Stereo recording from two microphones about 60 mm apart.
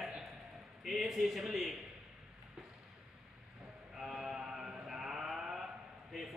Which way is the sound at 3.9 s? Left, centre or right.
Centre.